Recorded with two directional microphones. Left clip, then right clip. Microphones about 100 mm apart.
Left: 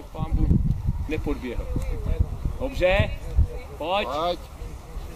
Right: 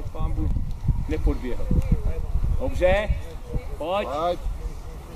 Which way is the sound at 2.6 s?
45° left (ahead or behind).